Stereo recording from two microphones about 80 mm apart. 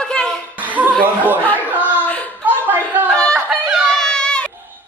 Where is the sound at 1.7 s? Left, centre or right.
Right.